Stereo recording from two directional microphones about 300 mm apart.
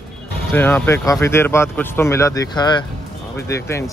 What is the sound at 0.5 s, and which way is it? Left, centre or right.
Speech, centre.